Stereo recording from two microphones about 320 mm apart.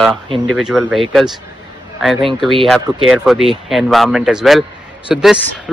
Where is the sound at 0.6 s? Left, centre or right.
Centre.